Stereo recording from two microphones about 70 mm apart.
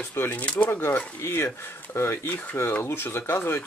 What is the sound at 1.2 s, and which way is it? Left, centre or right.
Speech, left.